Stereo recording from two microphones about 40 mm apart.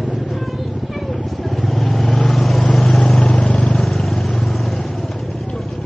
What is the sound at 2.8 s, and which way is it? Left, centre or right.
Vehicle, left.